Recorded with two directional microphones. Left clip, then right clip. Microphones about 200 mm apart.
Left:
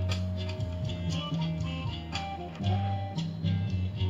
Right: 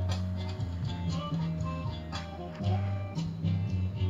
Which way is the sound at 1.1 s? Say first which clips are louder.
Left 2 dB; 30° left (ahead or behind).